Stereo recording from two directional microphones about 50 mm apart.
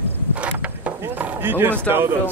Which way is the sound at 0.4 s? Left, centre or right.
Right.